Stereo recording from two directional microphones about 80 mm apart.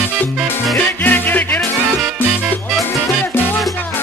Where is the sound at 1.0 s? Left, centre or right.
Left.